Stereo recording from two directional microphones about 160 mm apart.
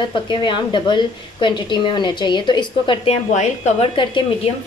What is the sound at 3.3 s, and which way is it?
Speech, 45° left (ahead or behind).